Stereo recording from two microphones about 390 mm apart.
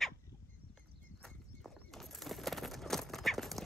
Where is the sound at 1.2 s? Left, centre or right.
Centre.